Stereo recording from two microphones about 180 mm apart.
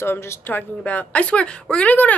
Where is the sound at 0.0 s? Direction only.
15° left (ahead or behind).